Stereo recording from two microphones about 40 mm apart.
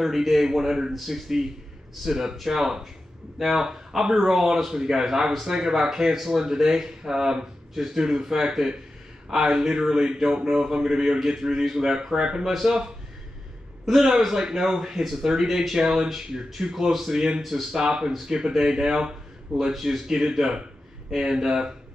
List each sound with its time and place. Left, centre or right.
0.0 s speech: centre
17.7 s speech: centre
19.5 s speech: centre